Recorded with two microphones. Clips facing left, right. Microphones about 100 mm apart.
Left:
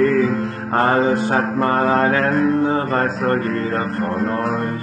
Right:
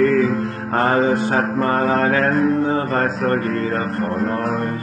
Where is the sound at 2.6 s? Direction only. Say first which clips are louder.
Left 1 dB; 35° left (ahead or behind).